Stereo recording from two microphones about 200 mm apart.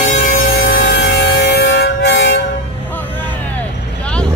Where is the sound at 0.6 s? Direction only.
50° left (ahead or behind).